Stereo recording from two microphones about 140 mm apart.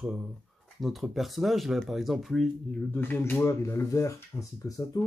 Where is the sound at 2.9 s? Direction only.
15° left (ahead or behind).